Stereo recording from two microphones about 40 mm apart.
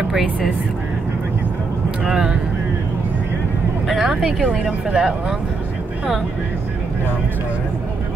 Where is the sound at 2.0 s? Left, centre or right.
Centre.